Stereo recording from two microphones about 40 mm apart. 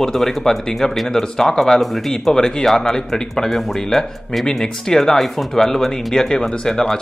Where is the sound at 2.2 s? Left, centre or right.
Centre.